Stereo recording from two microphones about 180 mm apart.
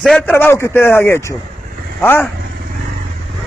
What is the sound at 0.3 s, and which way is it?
Speech, 15° left (ahead or behind).